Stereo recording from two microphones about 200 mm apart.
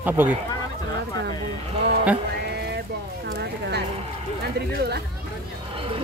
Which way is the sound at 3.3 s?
55° right (ahead or behind).